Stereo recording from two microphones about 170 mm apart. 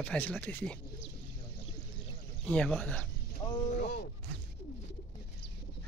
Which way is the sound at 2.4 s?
5° left (ahead or behind).